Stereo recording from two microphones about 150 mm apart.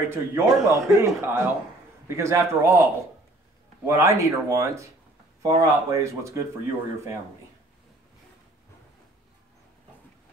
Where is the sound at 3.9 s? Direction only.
20° right (ahead or behind).